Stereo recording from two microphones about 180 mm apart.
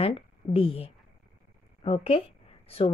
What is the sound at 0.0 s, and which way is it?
A woman's voice, 30° left (ahead or behind).